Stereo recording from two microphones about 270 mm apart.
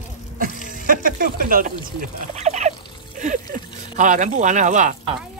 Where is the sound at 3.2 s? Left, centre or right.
Right.